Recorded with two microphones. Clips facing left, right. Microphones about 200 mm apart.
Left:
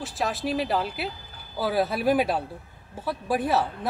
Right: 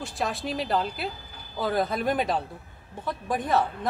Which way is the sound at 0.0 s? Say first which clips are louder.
Left 2 dB; centre (ahead or behind).